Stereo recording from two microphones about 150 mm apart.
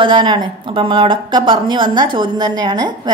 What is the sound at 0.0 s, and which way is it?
A woman's voice, 30° right (ahead or behind).